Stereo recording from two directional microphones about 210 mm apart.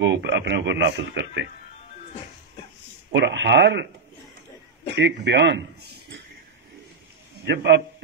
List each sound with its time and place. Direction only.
0.0 s speech: 55° right (ahead or behind)
3.1 s speech: 55° right (ahead or behind)
4.9 s speech: 55° right (ahead or behind)
7.4 s speech: 55° right (ahead or behind)